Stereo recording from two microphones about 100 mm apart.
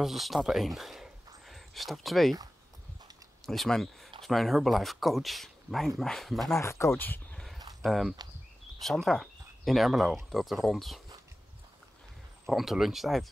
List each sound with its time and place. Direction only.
0.0 s speech: centre (ahead or behind)
3.4 s speech: 5° left (ahead or behind)
6.5 s speech: 30° left (ahead or behind)
7.8 s speech: centre (ahead or behind)
12.4 s speech: 5° right (ahead or behind)